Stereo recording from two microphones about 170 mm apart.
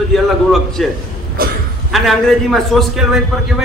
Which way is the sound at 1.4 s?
60° right (ahead or behind).